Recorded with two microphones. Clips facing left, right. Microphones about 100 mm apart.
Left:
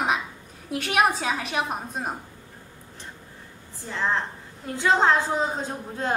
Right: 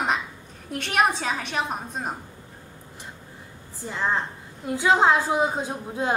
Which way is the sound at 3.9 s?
10° right (ahead or behind).